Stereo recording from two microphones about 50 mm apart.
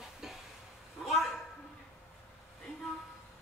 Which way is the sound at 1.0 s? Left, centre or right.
Centre.